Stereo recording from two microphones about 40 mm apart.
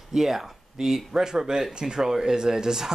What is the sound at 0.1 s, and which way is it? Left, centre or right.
Speech, centre.